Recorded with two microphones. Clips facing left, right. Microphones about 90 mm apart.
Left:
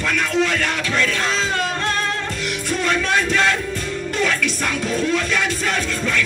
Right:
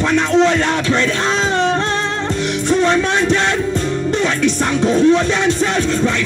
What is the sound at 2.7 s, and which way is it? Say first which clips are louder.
Music: right 6 dB; 25° right (ahead or behind).